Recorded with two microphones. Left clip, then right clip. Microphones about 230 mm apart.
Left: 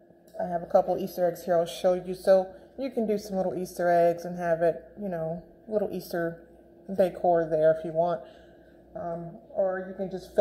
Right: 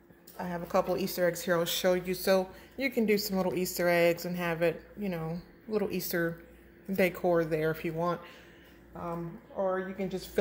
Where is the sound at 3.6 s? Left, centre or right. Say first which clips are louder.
Left 4 dB; centre.